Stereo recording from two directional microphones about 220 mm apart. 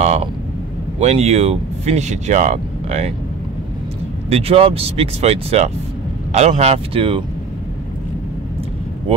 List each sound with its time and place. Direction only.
0.0 s vehicle: 30° right (ahead or behind)
0.9 s speech: 30° right (ahead or behind)
4.3 s speech: 25° right (ahead or behind)